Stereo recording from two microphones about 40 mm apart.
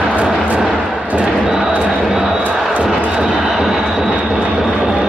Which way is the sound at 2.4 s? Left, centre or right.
Right.